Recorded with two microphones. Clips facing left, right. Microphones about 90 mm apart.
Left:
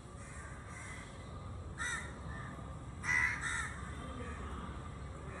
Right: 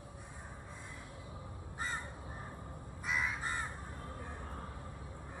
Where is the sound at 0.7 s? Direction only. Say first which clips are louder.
Even; 55° right (ahead or behind).